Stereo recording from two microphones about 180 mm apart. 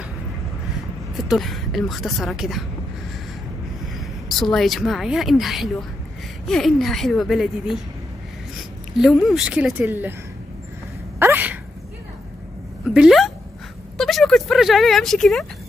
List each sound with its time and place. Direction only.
1.1 s speech: centre (ahead or behind)
4.0 s speech: centre (ahead or behind)
8.9 s speech: centre (ahead or behind)
11.1 s sneeze: 10° right (ahead or behind)
12.9 s speech: centre (ahead or behind)
13.9 s a sound: centre (ahead or behind)